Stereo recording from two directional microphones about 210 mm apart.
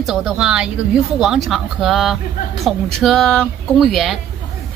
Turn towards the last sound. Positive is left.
turn(degrees=0)  # may be behind; listen again after turning